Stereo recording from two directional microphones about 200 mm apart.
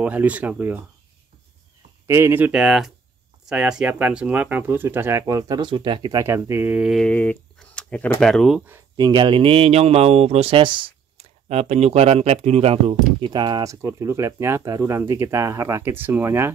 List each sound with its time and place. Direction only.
0.0 s speech: 5° right (ahead or behind)
2.0 s speech: 10° right (ahead or behind)
8.9 s speech: 20° right (ahead or behind)